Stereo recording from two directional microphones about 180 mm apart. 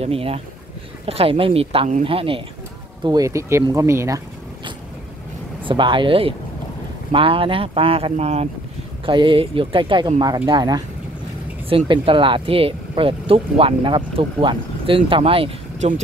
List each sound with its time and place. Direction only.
0.0 s speech: 30° right (ahead or behind); by 4.2 s 15° right (ahead or behind)
5.7 s speech: 25° right (ahead or behind)